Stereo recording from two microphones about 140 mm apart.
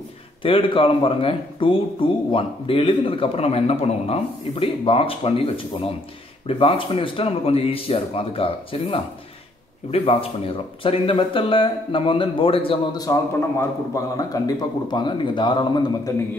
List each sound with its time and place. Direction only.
0.4 s speech: 40° left (ahead or behind)
12.9 s a man's voice: 25° left (ahead or behind)